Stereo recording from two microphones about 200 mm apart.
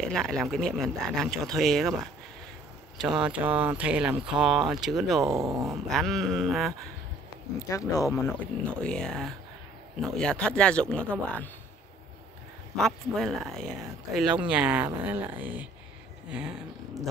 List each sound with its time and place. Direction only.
0.1 s speech: 5° left (ahead or behind)
3.0 s speech: 5° right (ahead or behind)
5.2 s speech: 15° right (ahead or behind)
5.7 s speech: centre (ahead or behind)
7.5 s speech: 15° left (ahead or behind)
12.7 s speech: centre (ahead or behind)